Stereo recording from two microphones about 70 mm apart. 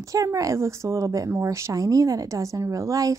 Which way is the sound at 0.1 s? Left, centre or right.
Right.